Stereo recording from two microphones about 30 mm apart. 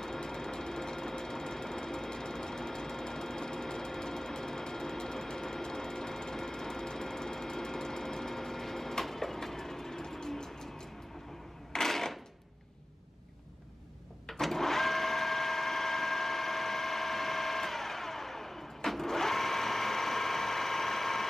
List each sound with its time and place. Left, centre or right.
0.0 s sewing machine: centre
9.0 s vehicle: centre
11.7 s a sound: centre
14.2 s sewing machine: centre